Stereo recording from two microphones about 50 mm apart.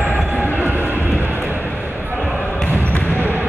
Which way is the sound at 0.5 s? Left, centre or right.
Right.